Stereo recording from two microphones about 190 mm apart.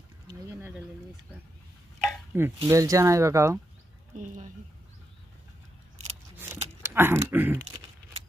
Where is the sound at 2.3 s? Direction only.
10° right (ahead or behind).